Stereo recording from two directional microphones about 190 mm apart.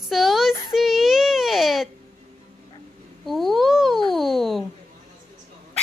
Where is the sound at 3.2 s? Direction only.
Centre (ahead or behind).